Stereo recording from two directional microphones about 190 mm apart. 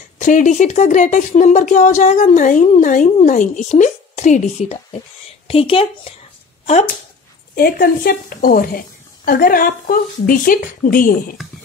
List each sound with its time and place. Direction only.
0.2 s speech: 40° left (ahead or behind)
7.5 s a woman's voice: 50° left (ahead or behind)